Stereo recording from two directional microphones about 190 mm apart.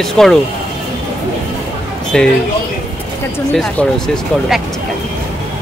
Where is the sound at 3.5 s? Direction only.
5° left (ahead or behind).